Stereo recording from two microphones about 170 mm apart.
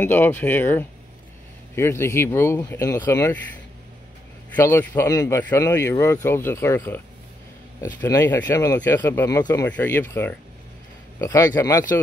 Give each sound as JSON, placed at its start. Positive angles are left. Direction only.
{"t": 0.0, "sound": "speech", "side_deg": 10}
{"t": 4.6, "sound": "a man's voice", "side_deg": 15}